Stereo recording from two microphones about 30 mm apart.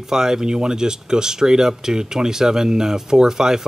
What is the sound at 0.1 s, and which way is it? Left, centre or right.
Speech, centre.